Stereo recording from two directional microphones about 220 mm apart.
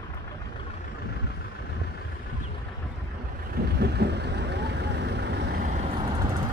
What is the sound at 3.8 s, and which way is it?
Vehicle, 50° right (ahead or behind).